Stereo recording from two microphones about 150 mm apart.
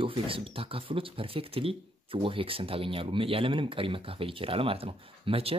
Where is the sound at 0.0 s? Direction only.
35° right (ahead or behind).